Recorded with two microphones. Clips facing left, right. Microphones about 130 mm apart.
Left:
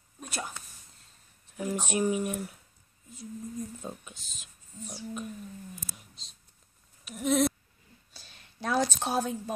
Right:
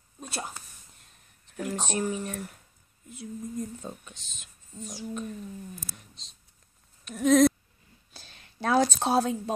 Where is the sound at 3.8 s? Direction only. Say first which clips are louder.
Even; 5° left (ahead or behind).